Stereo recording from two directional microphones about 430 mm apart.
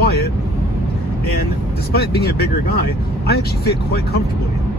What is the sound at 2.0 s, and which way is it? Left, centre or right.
Speech, left.